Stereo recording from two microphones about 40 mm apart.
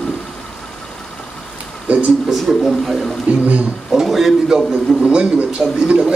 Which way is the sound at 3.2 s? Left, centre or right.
Right.